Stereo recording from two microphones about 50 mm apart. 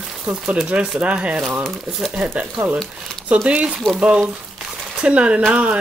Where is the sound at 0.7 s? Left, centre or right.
Right.